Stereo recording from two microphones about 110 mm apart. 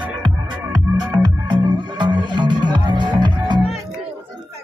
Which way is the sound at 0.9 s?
40° right (ahead or behind).